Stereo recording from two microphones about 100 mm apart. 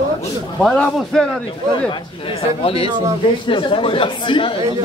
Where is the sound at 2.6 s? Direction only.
70° left (ahead or behind).